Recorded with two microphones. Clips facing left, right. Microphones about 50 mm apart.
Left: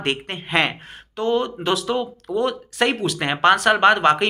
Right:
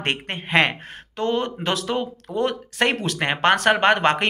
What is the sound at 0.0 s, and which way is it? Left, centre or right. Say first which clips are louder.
Speech: left 1 dB; right.